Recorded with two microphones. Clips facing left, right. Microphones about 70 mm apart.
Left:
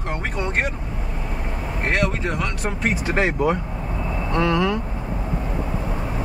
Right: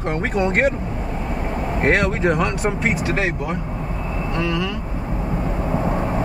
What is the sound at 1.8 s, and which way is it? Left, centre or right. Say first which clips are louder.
Speech: right 5 dB; right.